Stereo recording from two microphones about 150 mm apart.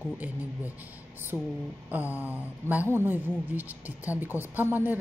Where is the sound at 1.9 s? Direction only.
10° right (ahead or behind).